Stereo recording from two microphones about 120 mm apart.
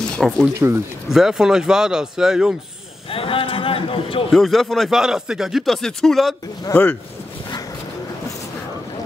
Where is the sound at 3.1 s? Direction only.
50° left (ahead or behind).